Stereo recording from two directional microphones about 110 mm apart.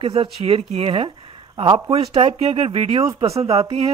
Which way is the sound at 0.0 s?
55° right (ahead or behind).